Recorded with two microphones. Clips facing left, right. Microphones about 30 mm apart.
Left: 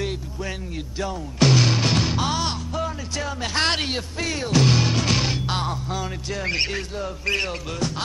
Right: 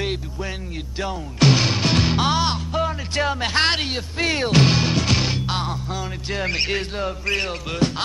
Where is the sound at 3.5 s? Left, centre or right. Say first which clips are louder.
Right 1 dB; right.